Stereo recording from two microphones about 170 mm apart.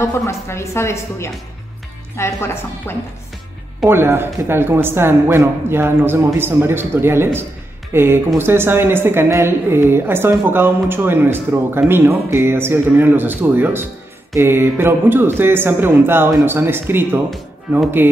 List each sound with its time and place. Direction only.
0.0 s a woman's voice: 15° left (ahead or behind)
3.8 s speech: 15° right (ahead or behind)